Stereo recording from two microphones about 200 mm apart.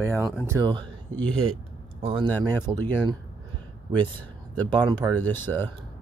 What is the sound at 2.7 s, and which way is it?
Speech, 10° right (ahead or behind).